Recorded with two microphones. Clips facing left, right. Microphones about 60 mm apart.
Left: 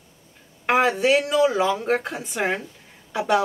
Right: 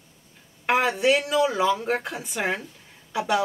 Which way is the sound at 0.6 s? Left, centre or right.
Centre.